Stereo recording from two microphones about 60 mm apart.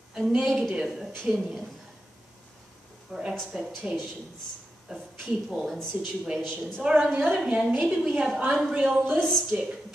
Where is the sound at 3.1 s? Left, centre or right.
Centre.